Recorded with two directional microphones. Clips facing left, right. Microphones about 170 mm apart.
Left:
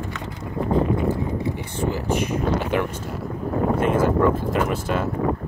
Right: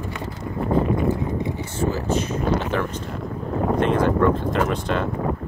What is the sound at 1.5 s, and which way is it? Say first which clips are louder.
Speech: right 1 dB; 15° left (ahead or behind).